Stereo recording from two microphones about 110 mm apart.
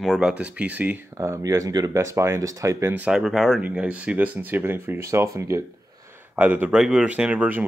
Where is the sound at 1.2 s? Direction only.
25° right (ahead or behind).